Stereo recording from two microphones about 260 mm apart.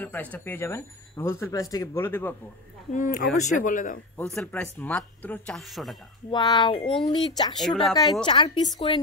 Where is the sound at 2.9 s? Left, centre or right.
Left.